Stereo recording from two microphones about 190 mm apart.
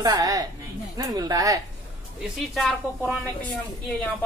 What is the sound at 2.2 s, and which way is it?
A woman's voice, centre (ahead or behind).